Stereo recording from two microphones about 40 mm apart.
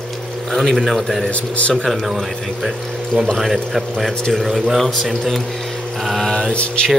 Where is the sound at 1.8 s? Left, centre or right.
Centre.